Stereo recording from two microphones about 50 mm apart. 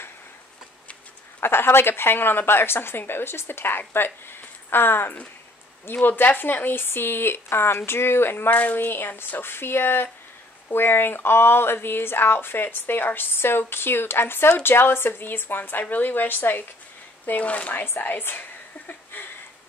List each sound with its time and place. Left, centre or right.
1.4 s speech: left
8.5 s speech: left
17.3 s speech: left
17.8 s speech: left
19.1 s a sound: left